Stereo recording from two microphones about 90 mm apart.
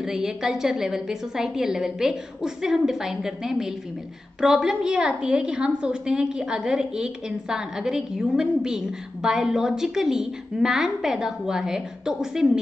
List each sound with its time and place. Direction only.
0.0 s a woman's voice: 5° right (ahead or behind)